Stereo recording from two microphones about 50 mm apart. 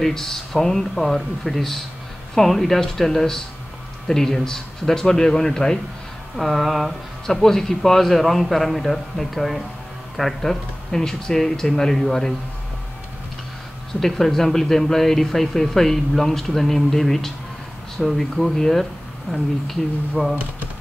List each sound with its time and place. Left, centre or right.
0.0 s speech: centre
6.3 s a man's voice: centre
13.9 s a man's voice: centre